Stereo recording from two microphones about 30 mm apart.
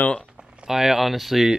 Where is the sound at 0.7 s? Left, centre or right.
Centre.